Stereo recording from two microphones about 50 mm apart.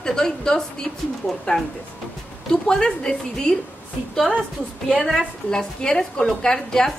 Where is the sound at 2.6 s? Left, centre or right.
Centre.